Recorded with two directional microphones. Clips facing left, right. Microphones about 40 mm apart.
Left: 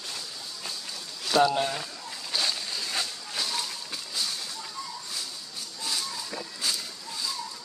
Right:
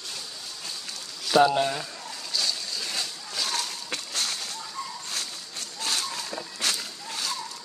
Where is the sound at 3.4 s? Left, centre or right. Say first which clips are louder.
Right 2 dB; right.